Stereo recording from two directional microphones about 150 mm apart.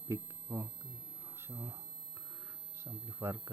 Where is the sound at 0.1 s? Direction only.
15° right (ahead or behind).